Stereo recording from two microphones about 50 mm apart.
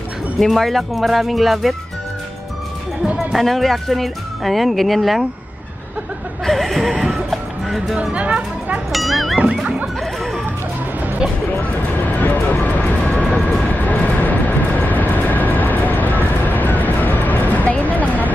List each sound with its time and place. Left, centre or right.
0.4 s speech: centre
3.3 s speech: centre
6.4 s a sound: centre
7.2 s music: centre
8.0 s speech: right
8.9 s music: centre
11.7 s music: left
13.7 s vehicle: left